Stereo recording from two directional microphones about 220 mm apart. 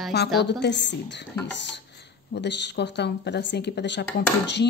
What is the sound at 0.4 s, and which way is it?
A woman's voice, 50° left (ahead or behind).